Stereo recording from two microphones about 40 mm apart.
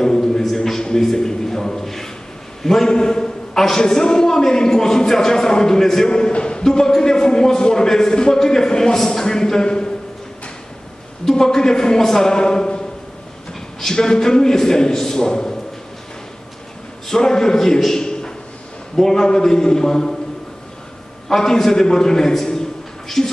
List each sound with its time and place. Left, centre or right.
0.0 s a sound: centre
2.6 s a man's voice: centre
6.0 s a sound: left
6.6 s a man's voice: centre
11.2 s a man's voice: centre
17.1 s a man's voice: centre
21.3 s a man's voice: centre